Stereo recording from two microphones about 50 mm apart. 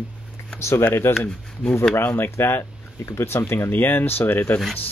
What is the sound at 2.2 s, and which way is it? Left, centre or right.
Speech, left.